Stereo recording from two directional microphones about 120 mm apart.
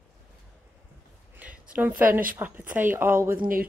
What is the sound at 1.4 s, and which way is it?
A woman's voice, 10° right (ahead or behind).